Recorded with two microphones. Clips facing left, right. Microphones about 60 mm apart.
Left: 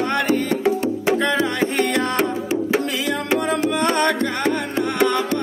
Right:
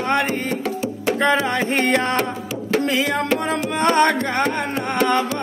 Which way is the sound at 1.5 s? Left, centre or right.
Right.